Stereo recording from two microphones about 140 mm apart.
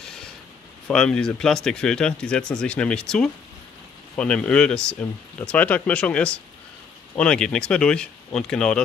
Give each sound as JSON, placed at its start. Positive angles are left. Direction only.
{"t": 0.8, "sound": "speech", "side_deg": 5}